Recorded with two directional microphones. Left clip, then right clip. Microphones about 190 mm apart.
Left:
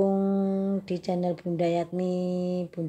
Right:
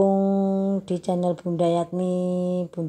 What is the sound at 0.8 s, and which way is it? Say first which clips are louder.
Speech: right 4 dB; 15° right (ahead or behind).